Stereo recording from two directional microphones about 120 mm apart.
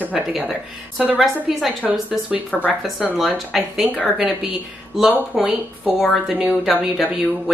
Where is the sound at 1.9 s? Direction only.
10° right (ahead or behind).